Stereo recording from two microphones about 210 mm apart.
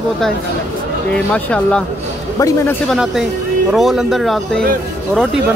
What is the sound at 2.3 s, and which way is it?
Speech, 15° left (ahead or behind).